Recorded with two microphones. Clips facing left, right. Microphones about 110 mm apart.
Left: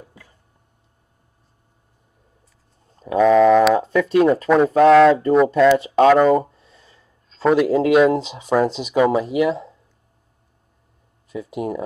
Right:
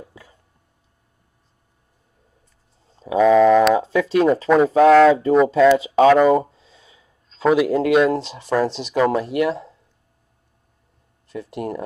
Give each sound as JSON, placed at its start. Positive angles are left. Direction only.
{"t": 3.0, "sound": "speech", "side_deg": 0}
{"t": 5.8, "sound": "speech", "side_deg": -15}
{"t": 6.0, "sound": "speech", "side_deg": -5}
{"t": 11.2, "sound": "speech", "side_deg": 5}